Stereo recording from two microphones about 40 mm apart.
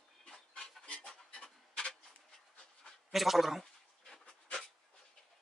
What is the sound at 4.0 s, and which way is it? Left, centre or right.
Dog, centre.